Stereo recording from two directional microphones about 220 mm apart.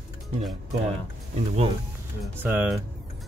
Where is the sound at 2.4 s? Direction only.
10° right (ahead or behind).